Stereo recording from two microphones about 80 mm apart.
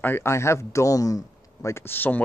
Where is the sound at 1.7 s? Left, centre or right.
Left.